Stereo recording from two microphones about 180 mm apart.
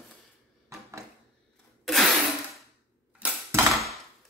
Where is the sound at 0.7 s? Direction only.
15° right (ahead or behind).